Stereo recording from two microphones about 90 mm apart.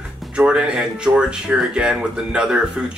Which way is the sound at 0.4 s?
10° right (ahead or behind).